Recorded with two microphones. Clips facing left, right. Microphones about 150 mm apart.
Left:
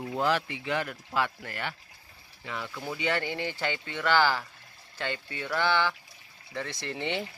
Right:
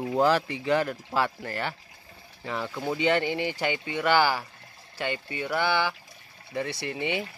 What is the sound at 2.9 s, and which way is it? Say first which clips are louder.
Speech: right 6 dB; 20° right (ahead or behind).